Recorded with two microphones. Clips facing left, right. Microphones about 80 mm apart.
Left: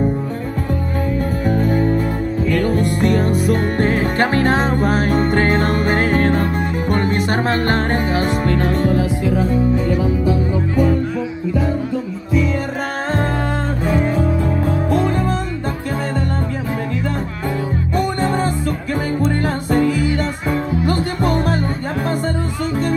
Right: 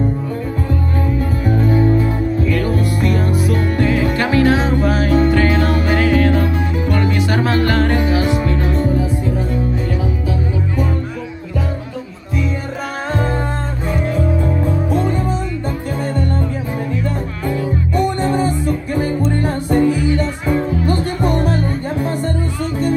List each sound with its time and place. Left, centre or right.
1.4 s music: left
13.8 s music: left
14.9 s music: left
19.3 s music: left